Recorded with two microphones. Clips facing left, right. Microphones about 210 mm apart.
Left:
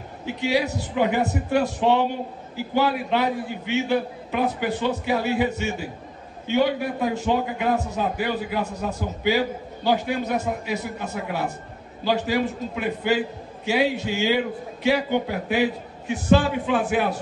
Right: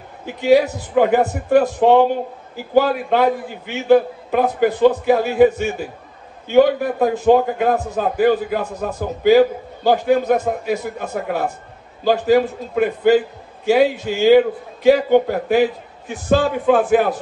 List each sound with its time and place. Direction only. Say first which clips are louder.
0.4 s a man's voice: right 9 dB; 50° right (ahead or behind)